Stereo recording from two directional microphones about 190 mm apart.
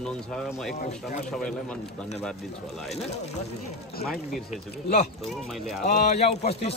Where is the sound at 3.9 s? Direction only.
50° left (ahead or behind).